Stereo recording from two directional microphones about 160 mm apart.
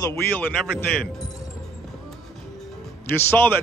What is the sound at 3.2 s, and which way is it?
Speech, 15° left (ahead or behind).